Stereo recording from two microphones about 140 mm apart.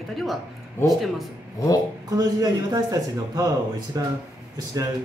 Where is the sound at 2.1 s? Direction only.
25° right (ahead or behind).